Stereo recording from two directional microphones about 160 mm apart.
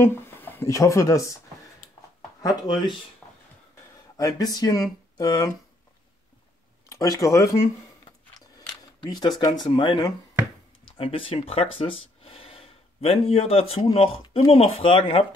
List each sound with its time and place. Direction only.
0.0 s speech: 15° left (ahead or behind)
2.4 s speech: 25° left (ahead or behind)
3.2 s a sound: 10° left (ahead or behind)
4.2 s speech: 20° left (ahead or behind)
6.9 s speech: 20° left (ahead or behind)